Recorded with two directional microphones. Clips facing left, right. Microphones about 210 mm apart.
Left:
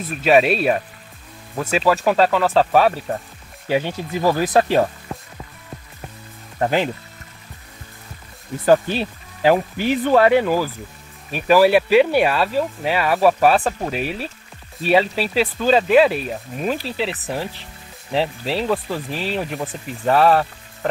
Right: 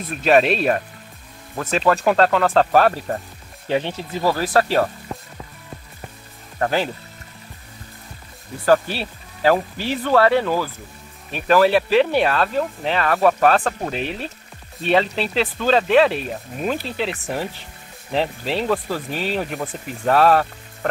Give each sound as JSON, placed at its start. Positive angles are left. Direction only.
{"t": 0.2, "sound": "speech", "side_deg": 5}
{"t": 6.6, "sound": "speech", "side_deg": 15}
{"t": 8.6, "sound": "speech", "side_deg": 15}